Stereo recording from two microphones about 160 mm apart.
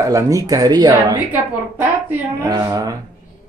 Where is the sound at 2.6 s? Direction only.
25° right (ahead or behind).